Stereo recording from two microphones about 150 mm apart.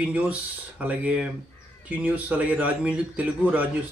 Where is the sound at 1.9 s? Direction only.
10° right (ahead or behind).